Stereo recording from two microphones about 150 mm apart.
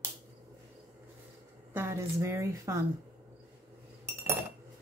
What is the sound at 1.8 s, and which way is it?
Speech, 15° right (ahead or behind).